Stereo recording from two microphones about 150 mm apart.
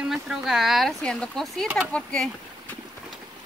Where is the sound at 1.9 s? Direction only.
5° left (ahead or behind).